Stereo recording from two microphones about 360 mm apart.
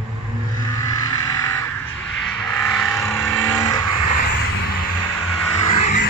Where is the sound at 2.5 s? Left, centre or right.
Centre.